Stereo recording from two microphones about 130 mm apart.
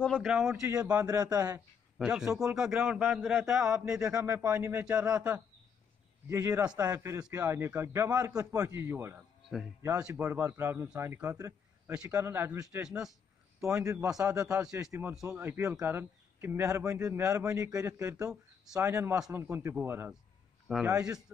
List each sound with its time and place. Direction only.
0.0 s speech: 5° left (ahead or behind)
0.3 s a man's voice: 5° right (ahead or behind)
1.0 s a man's voice: 30° right (ahead or behind)
2.0 s a man's voice: 5° right (ahead or behind)
3.1 s a man's voice: centre (ahead or behind)
4.4 s a man's voice: 20° right (ahead or behind)
12.7 s a man's voice: 5° right (ahead or behind)
13.6 s a man's voice: 20° right (ahead or behind)